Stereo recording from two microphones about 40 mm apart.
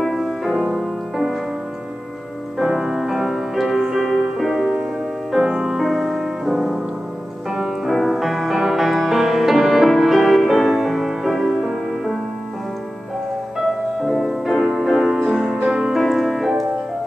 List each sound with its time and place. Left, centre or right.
0.0 s music: centre
2.6 s music: centre
13.6 s music: centre
16.0 s music: centre